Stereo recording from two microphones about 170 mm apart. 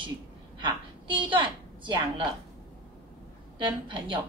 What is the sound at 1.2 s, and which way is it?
A woman's voice, 30° right (ahead or behind).